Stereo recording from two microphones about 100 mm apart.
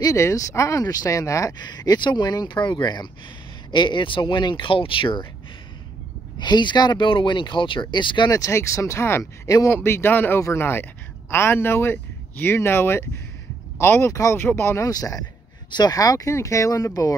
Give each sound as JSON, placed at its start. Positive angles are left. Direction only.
{"t": 0.0, "sound": "speech", "side_deg": 30}
{"t": 6.3, "sound": "speech", "side_deg": 50}
{"t": 8.3, "sound": "speech", "side_deg": 30}
{"t": 14.9, "sound": "speech", "side_deg": 40}